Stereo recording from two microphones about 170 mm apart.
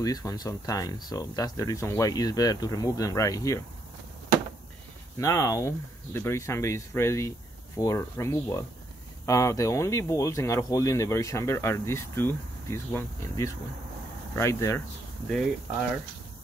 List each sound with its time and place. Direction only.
0.0 s speech: 20° left (ahead or behind)
5.2 s speech: 20° left (ahead or behind)